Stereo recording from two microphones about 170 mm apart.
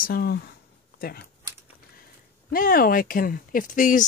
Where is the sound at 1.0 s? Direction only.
60° left (ahead or behind).